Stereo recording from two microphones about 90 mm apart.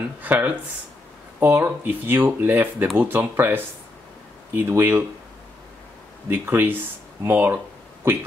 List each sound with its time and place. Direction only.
0.2 s speech: 20° right (ahead or behind)
6.2 s speech: 25° right (ahead or behind)